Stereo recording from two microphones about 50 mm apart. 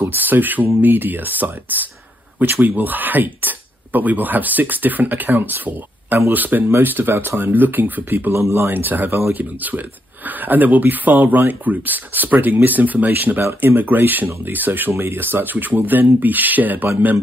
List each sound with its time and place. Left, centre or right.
0.1 s speech: right
8.3 s speech: right
8.6 s speech: right